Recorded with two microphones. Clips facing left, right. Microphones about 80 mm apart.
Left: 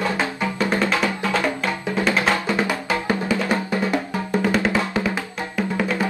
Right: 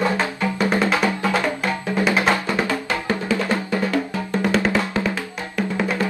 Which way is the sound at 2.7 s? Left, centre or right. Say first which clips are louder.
Even; centre.